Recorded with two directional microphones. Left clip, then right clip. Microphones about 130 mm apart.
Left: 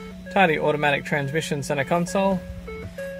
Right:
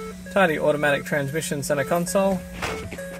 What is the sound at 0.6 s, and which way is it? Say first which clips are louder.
Speech: right 1 dB; 35° left (ahead or behind).